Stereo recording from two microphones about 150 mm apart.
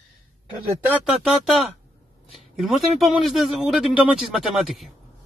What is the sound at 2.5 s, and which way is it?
A man's voice, centre (ahead or behind).